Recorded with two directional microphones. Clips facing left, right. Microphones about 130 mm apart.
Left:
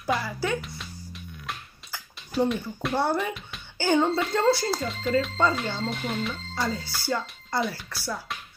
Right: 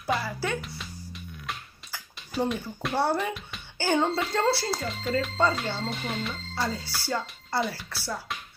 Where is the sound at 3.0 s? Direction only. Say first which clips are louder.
Even; 30° right (ahead or behind).